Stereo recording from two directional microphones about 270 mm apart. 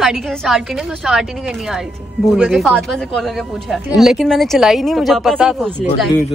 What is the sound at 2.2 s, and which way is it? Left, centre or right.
A woman's voice, centre.